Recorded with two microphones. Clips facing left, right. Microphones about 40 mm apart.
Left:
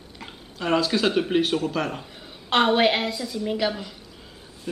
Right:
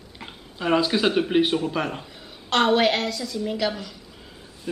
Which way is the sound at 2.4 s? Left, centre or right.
Centre.